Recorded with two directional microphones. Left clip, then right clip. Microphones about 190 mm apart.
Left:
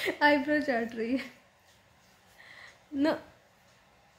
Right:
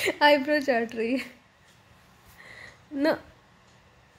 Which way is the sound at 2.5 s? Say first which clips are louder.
Right 2 dB; 30° right (ahead or behind).